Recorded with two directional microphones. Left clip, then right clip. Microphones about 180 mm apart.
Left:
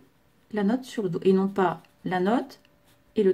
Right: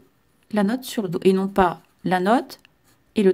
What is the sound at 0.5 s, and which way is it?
Speech, 40° right (ahead or behind).